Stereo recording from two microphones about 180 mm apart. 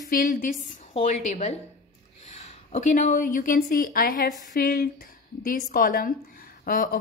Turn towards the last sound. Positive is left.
turn(degrees=50)  # may be behind; listen again after turning